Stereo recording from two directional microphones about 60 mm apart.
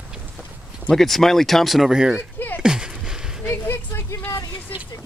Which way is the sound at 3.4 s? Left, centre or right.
Left.